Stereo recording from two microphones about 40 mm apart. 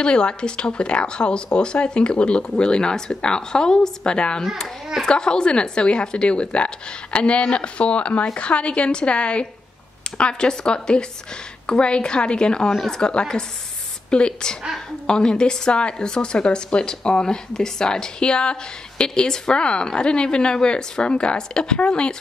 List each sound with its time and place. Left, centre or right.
0.0 s a woman's voice: left